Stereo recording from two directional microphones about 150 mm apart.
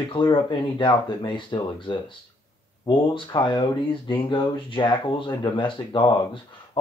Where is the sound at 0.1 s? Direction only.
30° left (ahead or behind).